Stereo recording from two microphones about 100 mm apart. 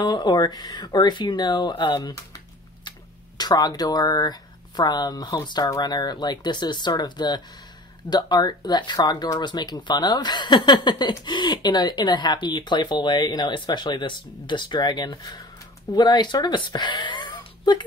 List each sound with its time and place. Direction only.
0.0 s speech: 45° left (ahead or behind)
2.0 s typing: 40° left (ahead or behind)
3.3 s speech: 40° left (ahead or behind)